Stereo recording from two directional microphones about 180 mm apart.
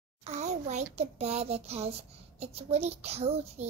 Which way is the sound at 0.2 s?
40° right (ahead or behind).